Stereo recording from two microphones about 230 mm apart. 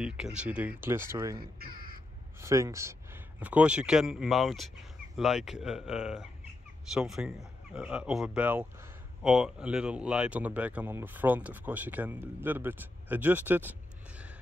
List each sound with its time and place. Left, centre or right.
0.0 s speech: centre
1.6 s crow: right
2.4 s a man's voice: centre